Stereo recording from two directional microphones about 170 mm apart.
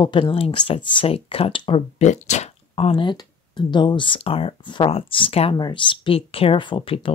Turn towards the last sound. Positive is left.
turn(degrees=30)  # may be behind; listen again after turning